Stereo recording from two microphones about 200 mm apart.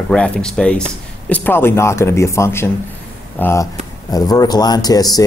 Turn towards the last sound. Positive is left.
turn(degrees=20)  # may be behind; listen again after turning